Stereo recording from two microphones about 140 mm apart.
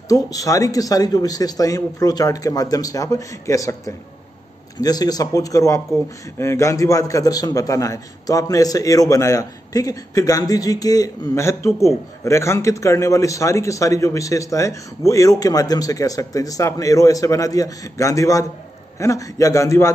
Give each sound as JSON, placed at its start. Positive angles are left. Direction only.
{"t": 0.1, "sound": "a man's voice", "side_deg": 25}